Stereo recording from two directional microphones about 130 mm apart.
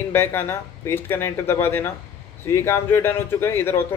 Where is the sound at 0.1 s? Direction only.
20° left (ahead or behind).